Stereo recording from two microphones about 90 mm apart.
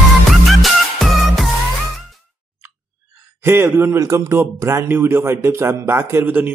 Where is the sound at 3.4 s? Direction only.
30° right (ahead or behind).